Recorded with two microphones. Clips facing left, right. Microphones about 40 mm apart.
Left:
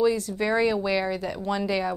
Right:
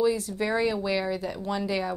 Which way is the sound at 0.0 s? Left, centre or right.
Centre.